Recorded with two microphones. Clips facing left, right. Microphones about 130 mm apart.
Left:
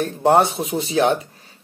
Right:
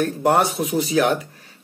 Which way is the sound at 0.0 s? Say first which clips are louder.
Left 2 dB; 25° left (ahead or behind).